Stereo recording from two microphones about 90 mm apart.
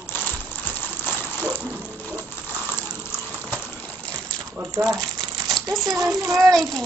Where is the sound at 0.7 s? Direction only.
20° left (ahead or behind).